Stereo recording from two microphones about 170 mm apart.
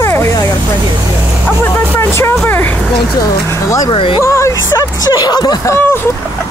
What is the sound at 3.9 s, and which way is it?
Speech, 30° left (ahead or behind).